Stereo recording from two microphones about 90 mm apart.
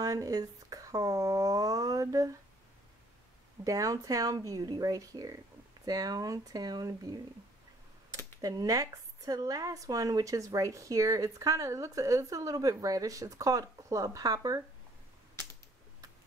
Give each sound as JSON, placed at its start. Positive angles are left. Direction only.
{"t": 0.0, "sound": "speech", "side_deg": -40}
{"t": 3.6, "sound": "speech", "side_deg": -40}
{"t": 8.4, "sound": "speech", "side_deg": -45}